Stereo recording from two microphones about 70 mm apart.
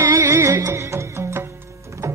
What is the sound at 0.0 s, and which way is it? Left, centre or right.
Music, right.